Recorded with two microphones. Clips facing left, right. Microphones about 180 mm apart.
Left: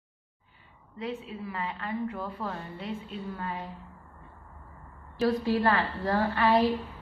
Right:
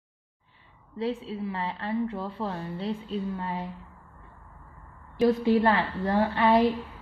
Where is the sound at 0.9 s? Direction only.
30° right (ahead or behind).